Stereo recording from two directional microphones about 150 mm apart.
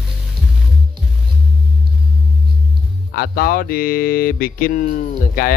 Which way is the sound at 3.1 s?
90° left.